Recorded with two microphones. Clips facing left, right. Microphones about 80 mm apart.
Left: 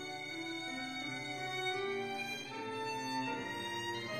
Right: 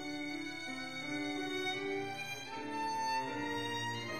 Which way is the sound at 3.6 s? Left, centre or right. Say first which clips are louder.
Right 1 dB; centre.